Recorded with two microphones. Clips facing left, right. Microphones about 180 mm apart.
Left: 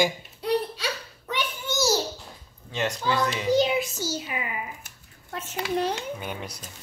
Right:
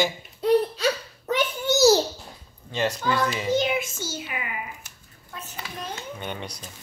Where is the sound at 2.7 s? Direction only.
Centre (ahead or behind).